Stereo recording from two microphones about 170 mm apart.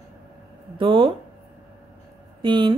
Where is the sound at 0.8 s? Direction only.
30° right (ahead or behind).